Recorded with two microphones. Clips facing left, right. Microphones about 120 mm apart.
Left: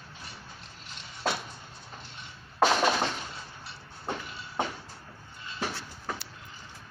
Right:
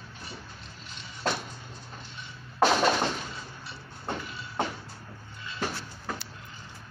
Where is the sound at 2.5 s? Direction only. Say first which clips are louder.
Right 1 dB; centre (ahead or behind).